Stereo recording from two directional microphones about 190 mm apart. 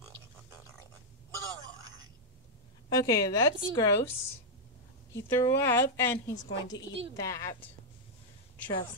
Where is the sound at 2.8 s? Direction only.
20° left (ahead or behind).